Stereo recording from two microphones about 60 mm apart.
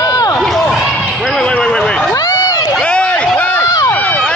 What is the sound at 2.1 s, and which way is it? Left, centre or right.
Run, left.